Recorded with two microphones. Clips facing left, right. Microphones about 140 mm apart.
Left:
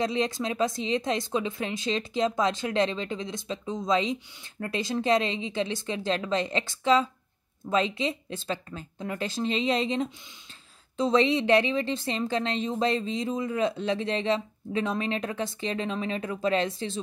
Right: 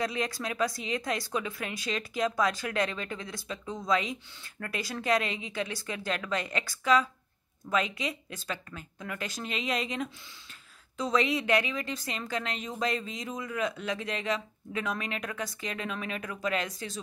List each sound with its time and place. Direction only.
0.0 s speech: 25° left (ahead or behind)